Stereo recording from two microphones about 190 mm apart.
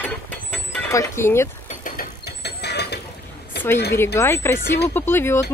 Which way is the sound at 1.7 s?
45° left (ahead or behind).